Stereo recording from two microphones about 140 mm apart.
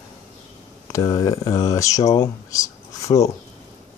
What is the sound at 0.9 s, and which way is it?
Speech, 25° left (ahead or behind).